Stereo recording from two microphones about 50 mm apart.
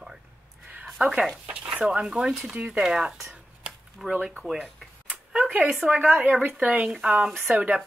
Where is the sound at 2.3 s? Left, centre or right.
Centre.